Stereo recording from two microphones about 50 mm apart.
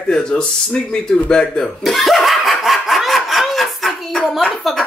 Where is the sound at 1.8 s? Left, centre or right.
Centre.